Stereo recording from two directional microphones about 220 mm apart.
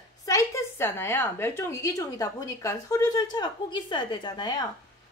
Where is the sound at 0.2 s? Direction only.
15° left (ahead or behind).